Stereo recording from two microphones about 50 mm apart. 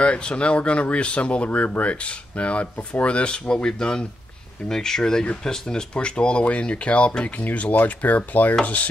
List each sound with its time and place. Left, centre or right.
0.0 s speech: left
5.2 s speech: left